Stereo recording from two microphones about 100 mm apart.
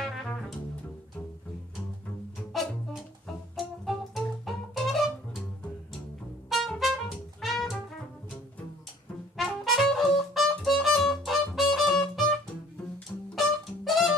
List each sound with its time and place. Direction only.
0.0 s music: 5° left (ahead or behind)
2.5 s music: centre (ahead or behind)
6.5 s music: centre (ahead or behind)
9.4 s music: centre (ahead or behind)
13.3 s music: centre (ahead or behind)